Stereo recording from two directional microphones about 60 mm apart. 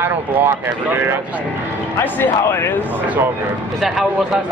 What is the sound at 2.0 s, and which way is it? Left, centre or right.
Speech, left.